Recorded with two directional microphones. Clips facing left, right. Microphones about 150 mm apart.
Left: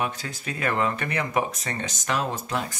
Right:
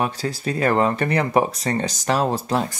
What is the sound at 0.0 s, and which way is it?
Speech, 35° right (ahead or behind).